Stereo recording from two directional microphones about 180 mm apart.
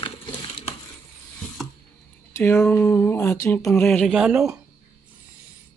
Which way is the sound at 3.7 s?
5° left (ahead or behind).